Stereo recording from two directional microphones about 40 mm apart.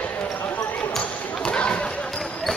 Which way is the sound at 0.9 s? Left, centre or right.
Left.